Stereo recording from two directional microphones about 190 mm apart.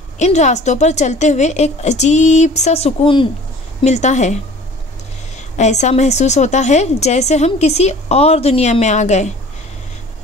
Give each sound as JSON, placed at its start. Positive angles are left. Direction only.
{"t": 0.2, "sound": "a woman's voice", "side_deg": 35}
{"t": 5.6, "sound": "a woman's voice", "side_deg": 35}